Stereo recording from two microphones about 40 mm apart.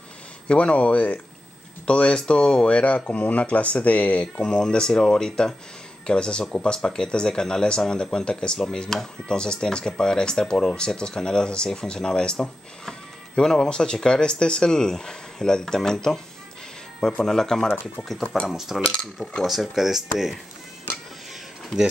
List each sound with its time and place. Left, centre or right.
0.5 s speech: left
4.4 s speech: centre
8.5 s speech: centre
18.5 s speech: centre